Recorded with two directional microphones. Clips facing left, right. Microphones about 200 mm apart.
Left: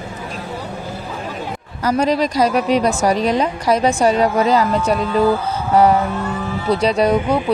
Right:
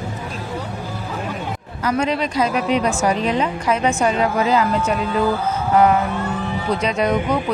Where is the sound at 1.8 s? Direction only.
40° left (ahead or behind).